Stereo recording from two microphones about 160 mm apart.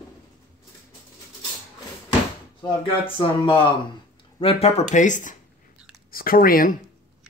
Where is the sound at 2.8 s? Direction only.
35° left (ahead or behind); by 5.4 s 50° left (ahead or behind).